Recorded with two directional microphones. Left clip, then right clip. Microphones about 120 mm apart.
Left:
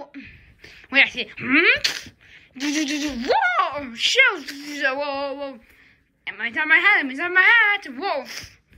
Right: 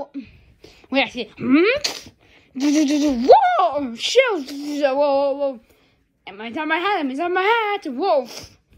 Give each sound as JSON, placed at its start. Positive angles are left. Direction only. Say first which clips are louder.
{"t": 0.1, "sound": "a sound", "louder": "right 4 dB", "side_deg": -25}
{"t": 0.9, "sound": "speech", "louder": "left 3 dB", "side_deg": -20}
{"t": 1.6, "sound": "speech", "louder": "left 3 dB", "side_deg": -35}
{"t": 3.4, "sound": "speech", "louder": "right 4 dB", "side_deg": -25}